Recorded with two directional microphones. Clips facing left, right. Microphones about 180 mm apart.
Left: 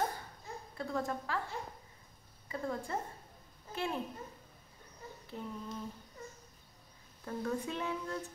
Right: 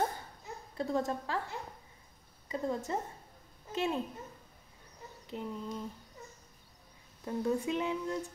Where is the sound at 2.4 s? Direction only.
20° right (ahead or behind).